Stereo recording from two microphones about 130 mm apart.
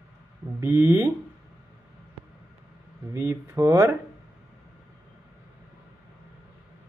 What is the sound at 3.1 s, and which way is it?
Speech, 25° right (ahead or behind).